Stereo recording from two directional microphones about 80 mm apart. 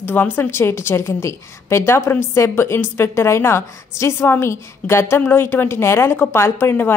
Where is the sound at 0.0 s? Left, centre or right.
Left.